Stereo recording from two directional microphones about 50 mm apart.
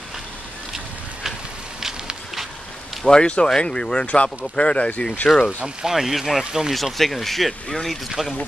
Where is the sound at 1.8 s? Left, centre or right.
Centre.